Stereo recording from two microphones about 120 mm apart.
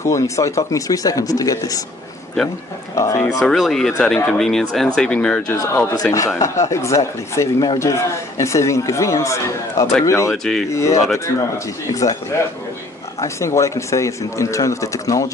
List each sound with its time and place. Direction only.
0.0 s a man's voice: 25° left (ahead or behind)
3.0 s a man's voice: 25° left (ahead or behind)
3.3 s speech: centre (ahead or behind)
6.1 s a man's voice: 25° left (ahead or behind)
10.3 s speech: 5° left (ahead or behind)
10.7 s a man's voice: 25° left (ahead or behind)
13.2 s a man's voice: 25° left (ahead or behind)